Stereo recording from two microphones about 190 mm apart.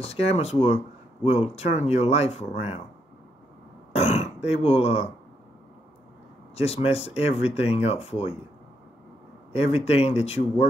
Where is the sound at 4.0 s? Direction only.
35° left (ahead or behind).